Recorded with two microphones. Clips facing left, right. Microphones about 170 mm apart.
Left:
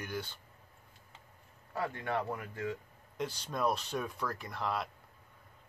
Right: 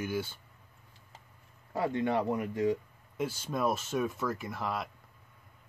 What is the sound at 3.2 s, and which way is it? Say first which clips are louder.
Speech: right 3 dB; 5° right (ahead or behind).